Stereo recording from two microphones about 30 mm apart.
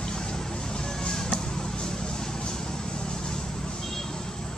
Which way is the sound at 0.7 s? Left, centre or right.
Left.